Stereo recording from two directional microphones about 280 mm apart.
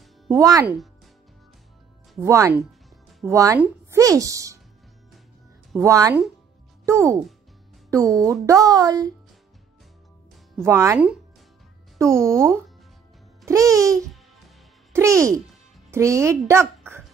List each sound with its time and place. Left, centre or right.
0.0 s music: centre
2.2 s speech: centre
5.7 s speech: centre
10.5 s a woman's voice: centre